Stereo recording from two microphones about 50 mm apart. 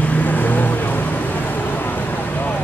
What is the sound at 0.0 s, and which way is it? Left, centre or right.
Vehicle, left.